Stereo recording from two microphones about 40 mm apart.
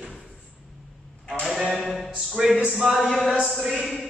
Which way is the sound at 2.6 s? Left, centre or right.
Right.